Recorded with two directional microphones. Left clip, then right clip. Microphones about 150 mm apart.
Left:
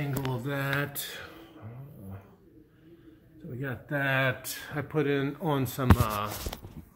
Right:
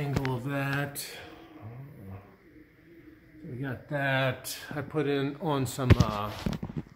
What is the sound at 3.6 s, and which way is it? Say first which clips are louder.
Speech: left 1 dB; 15° left (ahead or behind).